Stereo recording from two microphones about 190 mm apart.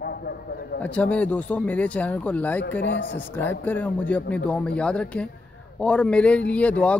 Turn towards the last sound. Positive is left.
turn(degrees=5)  # may be behind; listen again after turning